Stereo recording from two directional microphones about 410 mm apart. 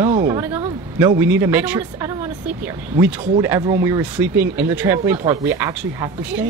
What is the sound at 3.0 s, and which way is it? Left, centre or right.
Speech, centre.